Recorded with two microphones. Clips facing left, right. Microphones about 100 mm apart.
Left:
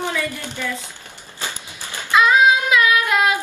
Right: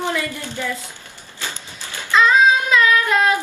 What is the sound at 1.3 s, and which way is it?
Child singing, 20° left (ahead or behind).